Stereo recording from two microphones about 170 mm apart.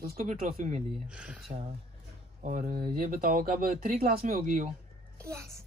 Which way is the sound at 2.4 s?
55° right (ahead or behind).